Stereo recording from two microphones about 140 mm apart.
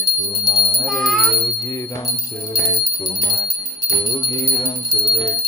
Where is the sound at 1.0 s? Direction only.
Centre (ahead or behind).